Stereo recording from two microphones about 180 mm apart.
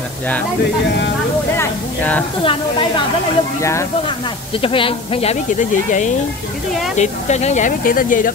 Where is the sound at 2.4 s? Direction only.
30° left (ahead or behind).